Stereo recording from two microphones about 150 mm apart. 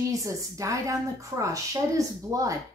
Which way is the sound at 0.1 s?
20° right (ahead or behind).